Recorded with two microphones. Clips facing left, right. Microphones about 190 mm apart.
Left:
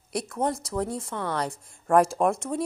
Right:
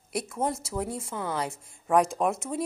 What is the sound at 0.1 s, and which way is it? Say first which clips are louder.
A woman's voice: left 2 dB; 5° right (ahead or behind).